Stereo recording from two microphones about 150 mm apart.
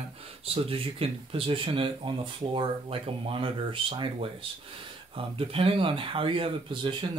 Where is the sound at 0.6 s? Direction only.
40° right (ahead or behind).